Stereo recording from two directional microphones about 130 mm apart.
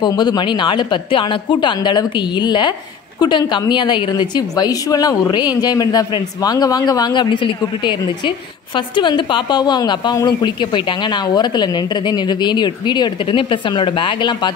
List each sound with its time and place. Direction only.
0.0 s a woman's voice: 30° left (ahead or behind)